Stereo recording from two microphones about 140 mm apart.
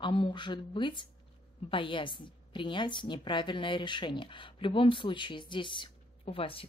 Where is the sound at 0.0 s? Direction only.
35° left (ahead or behind).